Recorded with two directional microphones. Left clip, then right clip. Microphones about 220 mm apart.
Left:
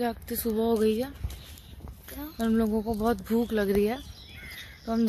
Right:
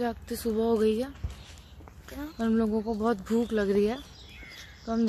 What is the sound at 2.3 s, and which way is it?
A woman's voice, 10° left (ahead or behind).